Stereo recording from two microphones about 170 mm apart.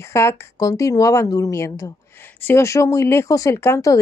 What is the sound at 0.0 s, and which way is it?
A woman's voice, 15° left (ahead or behind).